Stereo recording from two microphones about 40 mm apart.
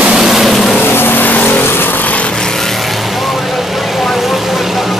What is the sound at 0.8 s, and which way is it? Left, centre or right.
Vehicle, left.